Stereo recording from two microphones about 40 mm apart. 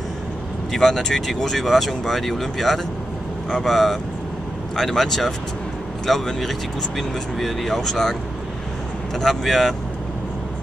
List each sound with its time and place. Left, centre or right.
0.7 s speech: centre
3.4 s speech: centre
3.7 s speech: centre
9.2 s speech: centre